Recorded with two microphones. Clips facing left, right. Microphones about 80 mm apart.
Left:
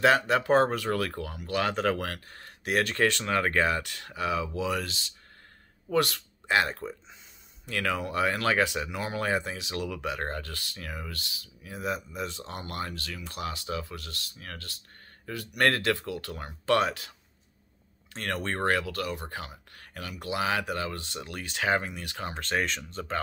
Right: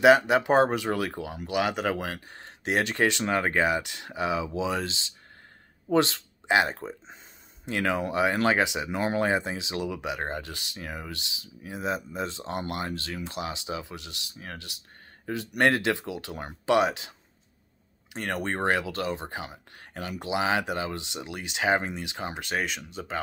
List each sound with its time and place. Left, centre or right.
0.0 s speech: centre
18.1 s speech: centre